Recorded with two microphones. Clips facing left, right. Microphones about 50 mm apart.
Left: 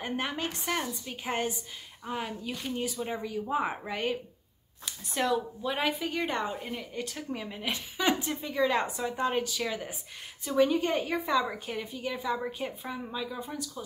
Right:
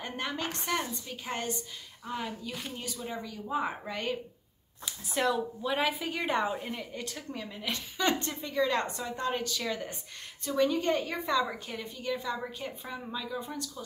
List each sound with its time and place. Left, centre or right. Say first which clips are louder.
0.0 s a woman's voice: left 2 dB; centre
0.5 s a woman's voice: even; centre
1.0 s a woman's voice: left 3 dB; centre
4.8 s a woman's voice: even; centre
7.2 s a woman's voice: left 3 dB; centre